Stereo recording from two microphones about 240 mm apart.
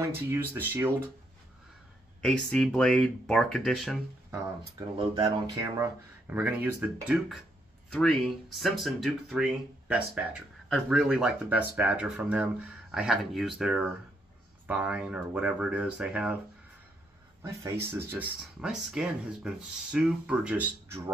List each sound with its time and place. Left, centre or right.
0.1 s speech: centre
2.2 s speech: centre
4.3 s speech: centre
17.4 s speech: centre